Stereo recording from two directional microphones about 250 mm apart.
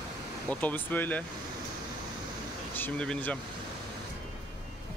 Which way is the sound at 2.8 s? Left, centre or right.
Centre.